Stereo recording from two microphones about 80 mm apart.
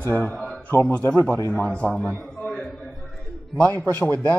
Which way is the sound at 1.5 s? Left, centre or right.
Centre.